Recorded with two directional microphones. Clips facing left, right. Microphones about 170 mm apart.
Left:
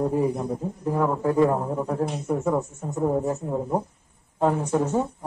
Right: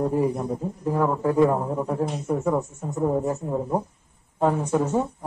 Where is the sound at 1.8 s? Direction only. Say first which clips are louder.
Even; centre (ahead or behind).